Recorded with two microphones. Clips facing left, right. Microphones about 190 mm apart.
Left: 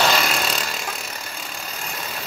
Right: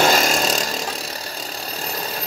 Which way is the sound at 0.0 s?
40° right (ahead or behind).